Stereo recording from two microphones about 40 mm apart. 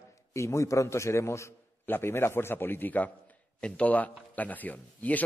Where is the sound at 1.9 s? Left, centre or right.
Left.